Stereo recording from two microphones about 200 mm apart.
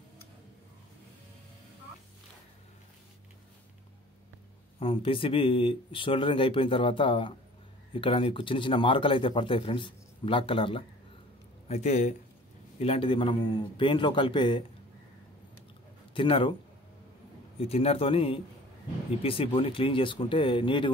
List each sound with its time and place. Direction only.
4.7 s speech: 25° left (ahead or behind)
16.2 s speech: 25° left (ahead or behind)
17.6 s speech: 30° left (ahead or behind)